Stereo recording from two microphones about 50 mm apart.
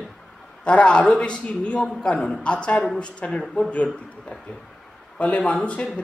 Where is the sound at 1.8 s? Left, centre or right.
Centre.